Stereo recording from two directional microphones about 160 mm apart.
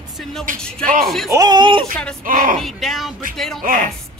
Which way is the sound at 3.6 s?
60° right (ahead or behind).